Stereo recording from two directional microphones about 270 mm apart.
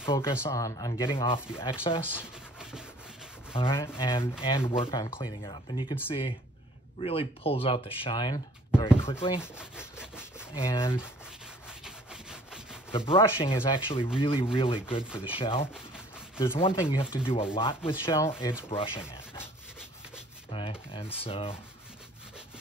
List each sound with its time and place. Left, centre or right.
0.1 s speech: centre
3.5 s speech: centre
9.4 s rub: centre
10.6 s speech: centre
11.8 s rub: centre
12.9 s speech: centre
18.7 s speech: centre
20.5 s speech: centre